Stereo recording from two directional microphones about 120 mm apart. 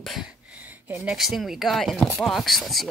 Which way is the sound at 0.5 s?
15° right (ahead or behind).